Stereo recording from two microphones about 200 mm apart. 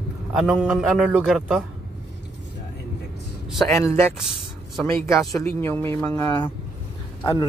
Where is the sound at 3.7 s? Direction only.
10° left (ahead or behind).